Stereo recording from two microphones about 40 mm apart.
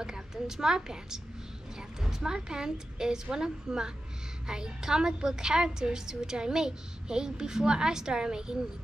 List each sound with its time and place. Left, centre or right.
0.0 s a woman's voice: centre